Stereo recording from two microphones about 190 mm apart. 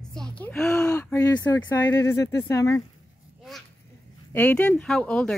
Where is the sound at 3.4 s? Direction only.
Centre (ahead or behind).